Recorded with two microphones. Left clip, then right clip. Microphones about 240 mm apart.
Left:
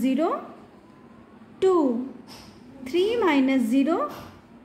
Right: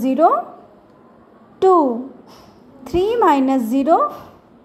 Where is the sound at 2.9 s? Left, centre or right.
Centre.